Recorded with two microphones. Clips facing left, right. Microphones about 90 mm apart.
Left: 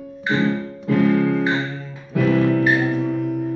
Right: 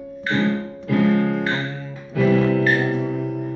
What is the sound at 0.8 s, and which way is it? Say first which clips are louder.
Music: left 1 dB; centre (ahead or behind).